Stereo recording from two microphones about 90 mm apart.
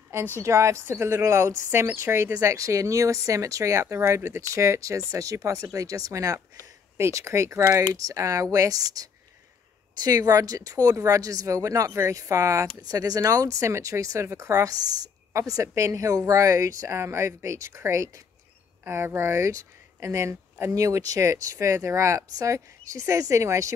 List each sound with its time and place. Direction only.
0.4 s speech: 35° right (ahead or behind)